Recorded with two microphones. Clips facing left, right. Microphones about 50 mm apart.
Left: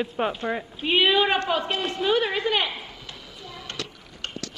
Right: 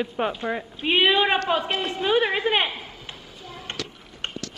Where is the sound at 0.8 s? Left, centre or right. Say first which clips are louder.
Right 1 dB; centre.